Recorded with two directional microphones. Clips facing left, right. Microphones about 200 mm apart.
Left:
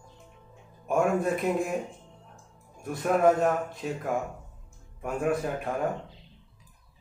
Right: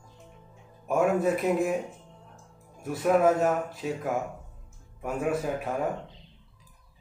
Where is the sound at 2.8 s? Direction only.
5° right (ahead or behind).